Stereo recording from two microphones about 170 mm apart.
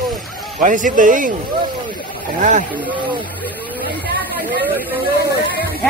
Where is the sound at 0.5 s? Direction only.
50° right (ahead or behind).